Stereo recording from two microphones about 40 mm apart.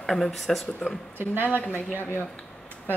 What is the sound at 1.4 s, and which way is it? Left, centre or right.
Speech, left.